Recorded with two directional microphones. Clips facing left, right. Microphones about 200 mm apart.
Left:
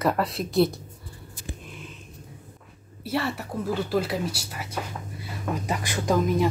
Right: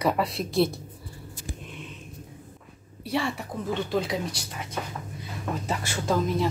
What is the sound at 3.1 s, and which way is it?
A woman's voice, 5° left (ahead or behind).